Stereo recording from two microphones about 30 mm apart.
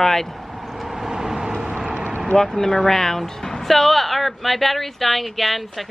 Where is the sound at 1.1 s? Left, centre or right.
Right.